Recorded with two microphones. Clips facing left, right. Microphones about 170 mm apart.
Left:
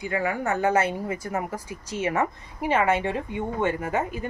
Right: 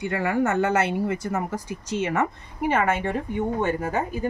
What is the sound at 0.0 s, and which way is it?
A woman's voice, 75° right (ahead or behind).